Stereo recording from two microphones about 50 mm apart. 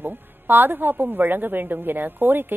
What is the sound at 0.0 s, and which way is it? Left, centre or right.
A woman's voice, right.